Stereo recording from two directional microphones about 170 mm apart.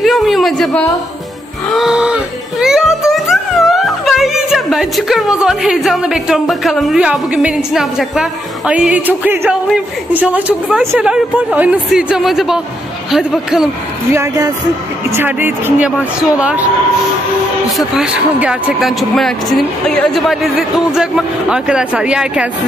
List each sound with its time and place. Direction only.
0.0 s a sound: centre (ahead or behind)
2.6 s a man's voice: centre (ahead or behind)
14.1 s speech: 20° right (ahead or behind)
17.6 s a man's voice: centre (ahead or behind)